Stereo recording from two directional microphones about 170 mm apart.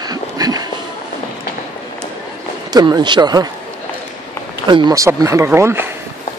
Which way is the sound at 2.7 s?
25° right (ahead or behind).